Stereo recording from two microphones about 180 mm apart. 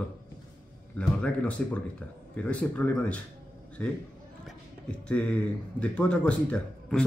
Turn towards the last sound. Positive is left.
turn(degrees=5)  # may be behind; listen again after turning